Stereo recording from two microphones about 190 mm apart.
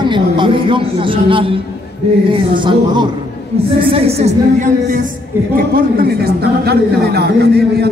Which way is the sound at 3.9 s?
30° right (ahead or behind).